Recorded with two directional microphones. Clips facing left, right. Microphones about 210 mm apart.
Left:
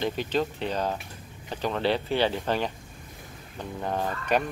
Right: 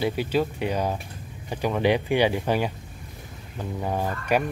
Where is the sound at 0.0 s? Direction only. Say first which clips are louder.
Right 3 dB; 10° right (ahead or behind).